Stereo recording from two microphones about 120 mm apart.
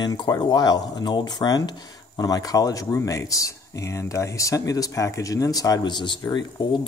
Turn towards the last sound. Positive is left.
turn(degrees=40)  # may be behind; listen again after turning